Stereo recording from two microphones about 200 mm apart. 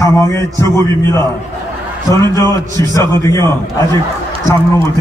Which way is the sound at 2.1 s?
15° left (ahead or behind).